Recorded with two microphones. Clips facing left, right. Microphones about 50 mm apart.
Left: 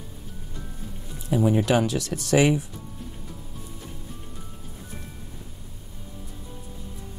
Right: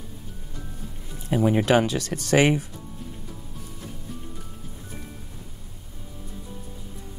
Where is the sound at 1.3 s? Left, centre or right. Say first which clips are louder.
Right 1 dB; right.